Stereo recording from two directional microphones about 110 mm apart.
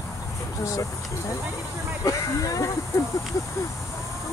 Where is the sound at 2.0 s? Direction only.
30° left (ahead or behind).